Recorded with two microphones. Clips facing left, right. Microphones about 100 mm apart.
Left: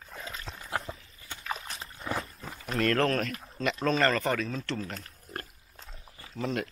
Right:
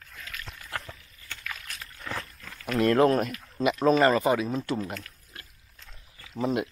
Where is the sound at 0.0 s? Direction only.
30° left (ahead or behind).